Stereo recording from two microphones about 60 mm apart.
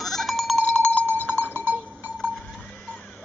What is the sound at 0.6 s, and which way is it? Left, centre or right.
Cowbell, centre.